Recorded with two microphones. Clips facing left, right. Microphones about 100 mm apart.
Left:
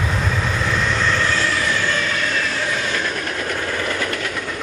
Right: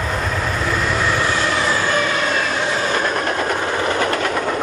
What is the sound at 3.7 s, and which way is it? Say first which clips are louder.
Vehicle: right 5 dB; 30° right (ahead or behind).